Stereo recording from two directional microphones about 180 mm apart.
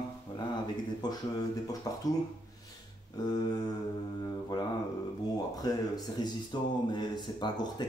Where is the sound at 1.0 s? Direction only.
25° left (ahead or behind).